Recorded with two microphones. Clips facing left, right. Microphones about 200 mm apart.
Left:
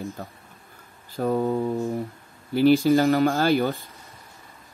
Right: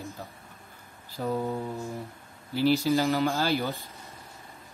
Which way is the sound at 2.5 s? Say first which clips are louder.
Left 6 dB; 55° left (ahead or behind).